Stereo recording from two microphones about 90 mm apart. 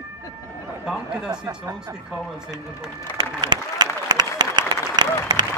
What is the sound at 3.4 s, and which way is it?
Applause, 50° right (ahead or behind).